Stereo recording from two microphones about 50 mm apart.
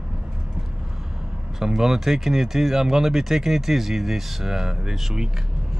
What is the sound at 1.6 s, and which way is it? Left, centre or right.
Speech, centre.